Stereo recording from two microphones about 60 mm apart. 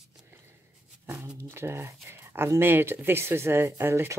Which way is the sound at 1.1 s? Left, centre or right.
Right.